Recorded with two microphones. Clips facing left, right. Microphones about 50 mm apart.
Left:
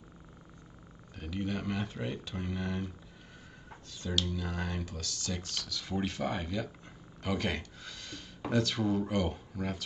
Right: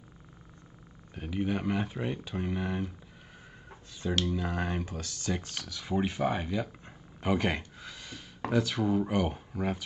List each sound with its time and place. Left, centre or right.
1.1 s speech: centre
4.1 s speech: right